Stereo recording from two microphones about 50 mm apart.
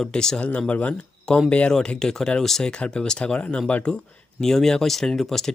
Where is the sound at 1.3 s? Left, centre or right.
Centre.